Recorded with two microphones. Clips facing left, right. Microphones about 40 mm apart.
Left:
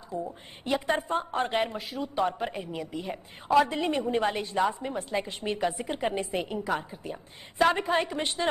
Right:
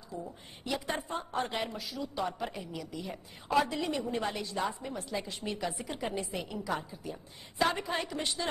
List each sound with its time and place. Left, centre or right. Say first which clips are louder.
0.1 s a woman's voice: left 7 dB; left